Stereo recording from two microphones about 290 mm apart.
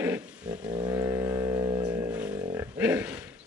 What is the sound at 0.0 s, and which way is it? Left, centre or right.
Music, centre.